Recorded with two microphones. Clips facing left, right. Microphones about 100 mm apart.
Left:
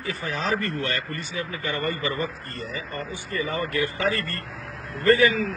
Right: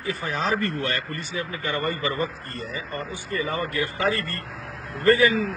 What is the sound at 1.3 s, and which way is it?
Speech, 30° left (ahead or behind).